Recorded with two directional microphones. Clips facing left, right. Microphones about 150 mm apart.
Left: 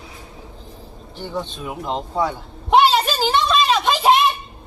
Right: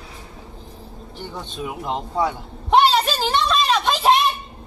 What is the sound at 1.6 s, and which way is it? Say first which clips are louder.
Speech: left 1 dB; 10° right (ahead or behind).